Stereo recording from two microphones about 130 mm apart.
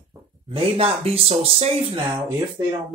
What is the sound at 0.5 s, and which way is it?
Speech, 50° right (ahead or behind).